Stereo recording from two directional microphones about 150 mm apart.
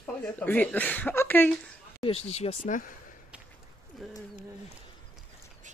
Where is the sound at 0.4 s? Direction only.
10° left (ahead or behind).